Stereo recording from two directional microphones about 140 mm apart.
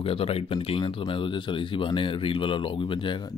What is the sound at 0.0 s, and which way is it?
Speech, 45° left (ahead or behind).